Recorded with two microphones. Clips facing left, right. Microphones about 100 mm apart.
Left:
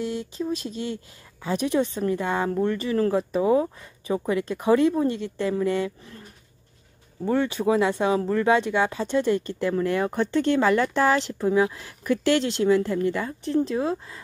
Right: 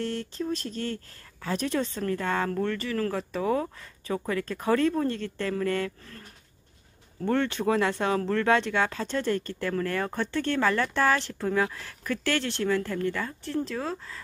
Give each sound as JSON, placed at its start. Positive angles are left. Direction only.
{"t": 0.0, "sound": "speech", "side_deg": 10}
{"t": 7.2, "sound": "speech", "side_deg": 10}